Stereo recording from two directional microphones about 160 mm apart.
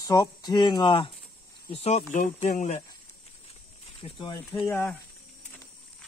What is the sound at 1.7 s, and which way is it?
Speech, 40° left (ahead or behind).